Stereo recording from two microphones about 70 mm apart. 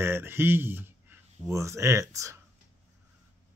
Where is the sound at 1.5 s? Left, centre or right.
Right.